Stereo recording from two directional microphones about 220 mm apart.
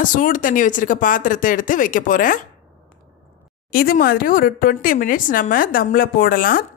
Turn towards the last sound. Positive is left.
turn(degrees=40)  # may be behind; listen again after turning